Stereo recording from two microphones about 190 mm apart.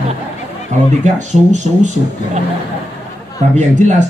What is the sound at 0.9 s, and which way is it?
Speech, 40° right (ahead or behind).